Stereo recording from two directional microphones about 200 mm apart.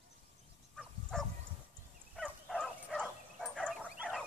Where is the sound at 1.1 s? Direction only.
Centre (ahead or behind).